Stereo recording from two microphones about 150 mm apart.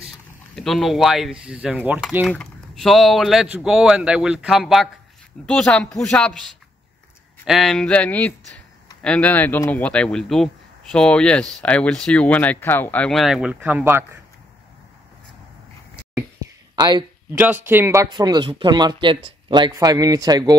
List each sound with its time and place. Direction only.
0.6 s speech: centre (ahead or behind)
16.7 s speech: 30° right (ahead or behind)
17.3 s speech: 15° right (ahead or behind)
18.1 s speech: 30° right (ahead or behind)